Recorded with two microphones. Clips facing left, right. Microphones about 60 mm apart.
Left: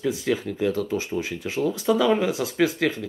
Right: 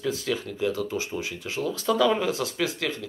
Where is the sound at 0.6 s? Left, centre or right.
Left.